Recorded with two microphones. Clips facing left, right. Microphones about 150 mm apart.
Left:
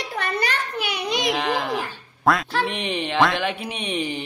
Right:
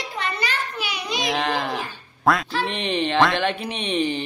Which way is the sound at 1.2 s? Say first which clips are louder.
Right 1 dB; 10° left (ahead or behind).